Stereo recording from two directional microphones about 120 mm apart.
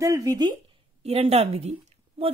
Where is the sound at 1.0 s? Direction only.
60° right (ahead or behind).